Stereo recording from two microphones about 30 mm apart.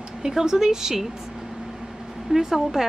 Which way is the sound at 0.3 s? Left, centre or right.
Centre.